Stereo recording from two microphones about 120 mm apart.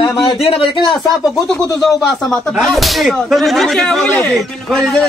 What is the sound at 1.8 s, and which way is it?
A man's voice, centre (ahead or behind).